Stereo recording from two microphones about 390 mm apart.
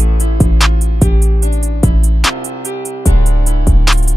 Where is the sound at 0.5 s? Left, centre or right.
Centre.